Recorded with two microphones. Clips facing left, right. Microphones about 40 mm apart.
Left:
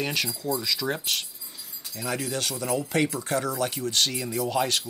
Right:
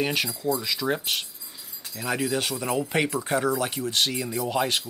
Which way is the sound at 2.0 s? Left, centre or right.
Centre.